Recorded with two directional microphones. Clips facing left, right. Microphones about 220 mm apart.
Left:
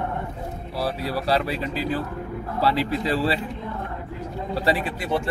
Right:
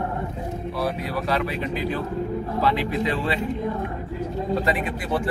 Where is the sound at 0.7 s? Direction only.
30° left (ahead or behind).